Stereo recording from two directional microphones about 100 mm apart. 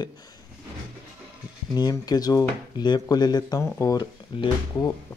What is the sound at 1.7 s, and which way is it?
Speech, 40° left (ahead or behind).